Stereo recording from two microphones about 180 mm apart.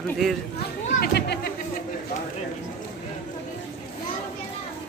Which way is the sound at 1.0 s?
65° left (ahead or behind).